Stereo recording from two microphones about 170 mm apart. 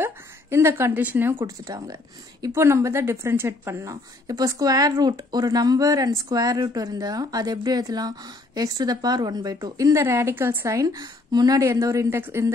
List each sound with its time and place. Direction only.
0.0 s a woman's voice: 15° right (ahead or behind)